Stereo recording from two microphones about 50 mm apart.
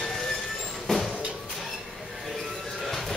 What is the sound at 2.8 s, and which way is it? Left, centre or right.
Music, centre.